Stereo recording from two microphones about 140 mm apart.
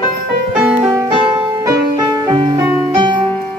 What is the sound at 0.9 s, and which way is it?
Music, 25° right (ahead or behind).